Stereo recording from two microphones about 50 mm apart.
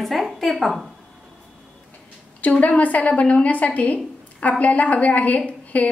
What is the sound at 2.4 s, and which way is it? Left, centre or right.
A woman's voice, left.